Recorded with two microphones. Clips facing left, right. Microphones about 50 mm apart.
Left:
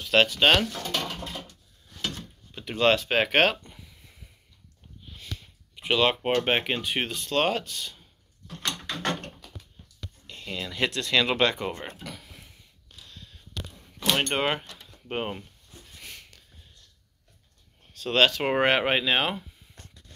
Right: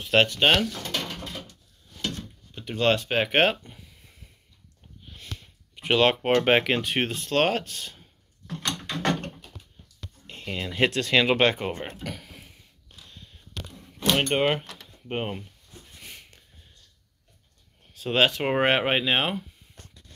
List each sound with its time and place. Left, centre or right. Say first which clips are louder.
0.0 s speech: even; centre
2.5 s speech: left 1 dB; centre
3.3 s speech: right 2 dB; centre
5.8 s speech: right 2 dB; right
6.5 s speech: right 4 dB; right
7.0 s speech: right 1 dB; right
8.5 s mechanisms: right 1 dB; right
10.2 s speech: right 2 dB; right
11.1 s speech: right 2 dB; centre
12.2 s a sound: right 3 dB; centre
13.6 s a sound: right 2 dB; centre
14.4 s speech: right 3 dB; centre
16.0 s a sound: left 1 dB; centre
17.9 s speech: even; centre